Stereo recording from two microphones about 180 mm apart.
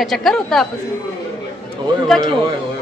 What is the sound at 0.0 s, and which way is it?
Speech, centre (ahead or behind).